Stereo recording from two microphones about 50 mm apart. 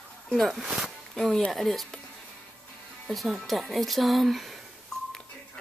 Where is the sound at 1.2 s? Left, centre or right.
Centre.